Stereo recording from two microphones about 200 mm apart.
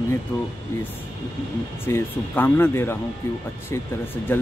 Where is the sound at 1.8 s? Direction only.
10° left (ahead or behind).